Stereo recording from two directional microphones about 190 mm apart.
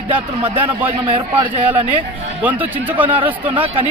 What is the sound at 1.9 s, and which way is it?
Speech, 10° right (ahead or behind).